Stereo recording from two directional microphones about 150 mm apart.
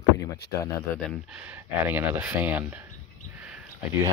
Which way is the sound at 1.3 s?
10° right (ahead or behind).